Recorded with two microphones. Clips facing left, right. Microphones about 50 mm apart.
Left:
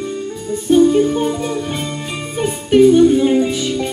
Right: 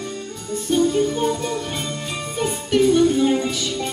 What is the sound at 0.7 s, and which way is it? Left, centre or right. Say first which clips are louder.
Music: left 7 dB; centre.